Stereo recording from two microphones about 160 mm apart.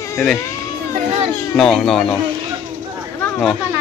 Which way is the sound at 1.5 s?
5° left (ahead or behind).